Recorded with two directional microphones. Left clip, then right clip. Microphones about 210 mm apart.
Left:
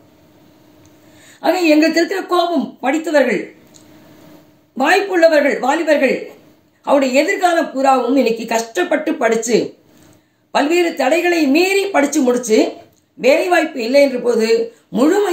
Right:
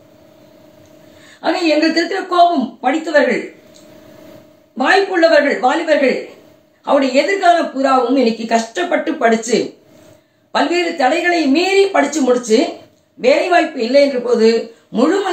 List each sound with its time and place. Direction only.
1.4 s a woman's voice: 50° left (ahead or behind)
4.7 s a woman's voice: 50° left (ahead or behind)